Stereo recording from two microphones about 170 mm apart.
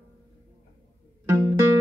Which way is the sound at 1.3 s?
20° right (ahead or behind).